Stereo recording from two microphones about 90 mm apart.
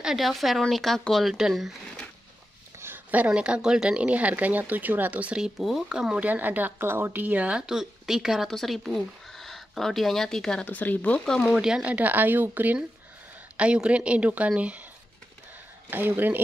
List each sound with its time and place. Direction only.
0.0 s speech: centre (ahead or behind)
2.8 s speech: 20° right (ahead or behind); by 10.7 s 5° left (ahead or behind)
10.7 s speech: 20° left (ahead or behind)
11.5 s speech: 10° right (ahead or behind)
15.9 s speech: 20° right (ahead or behind)